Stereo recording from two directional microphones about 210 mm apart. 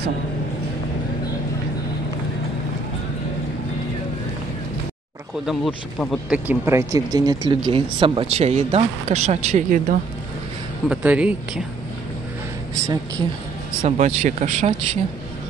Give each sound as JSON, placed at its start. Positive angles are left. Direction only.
{"t": 5.5, "sound": "speech", "side_deg": -5}
{"t": 10.9, "sound": "speech", "side_deg": -5}
{"t": 13.8, "sound": "speech", "side_deg": -35}